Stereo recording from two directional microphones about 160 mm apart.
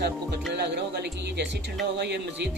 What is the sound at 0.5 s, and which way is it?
Speech, 90° right.